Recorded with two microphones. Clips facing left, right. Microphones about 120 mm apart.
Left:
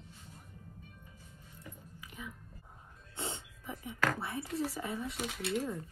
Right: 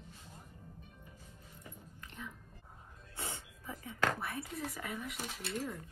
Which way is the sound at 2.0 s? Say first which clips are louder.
Left 1 dB; 10° left (ahead or behind).